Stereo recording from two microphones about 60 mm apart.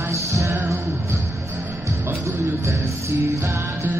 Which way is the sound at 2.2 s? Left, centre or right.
Right.